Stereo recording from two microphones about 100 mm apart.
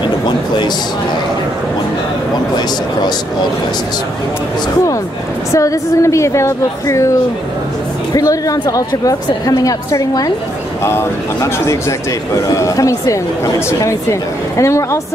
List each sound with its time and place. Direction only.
5.5 s a woman's voice: 35° left (ahead or behind)